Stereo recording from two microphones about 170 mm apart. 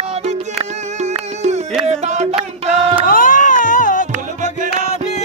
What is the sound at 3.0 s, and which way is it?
Music, 55° left (ahead or behind).